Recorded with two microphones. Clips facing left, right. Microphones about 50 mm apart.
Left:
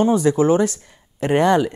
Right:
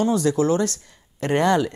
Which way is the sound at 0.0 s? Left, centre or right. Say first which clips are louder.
Left 4 dB; left.